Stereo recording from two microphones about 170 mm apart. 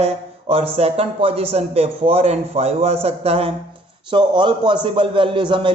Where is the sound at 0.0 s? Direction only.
35° right (ahead or behind).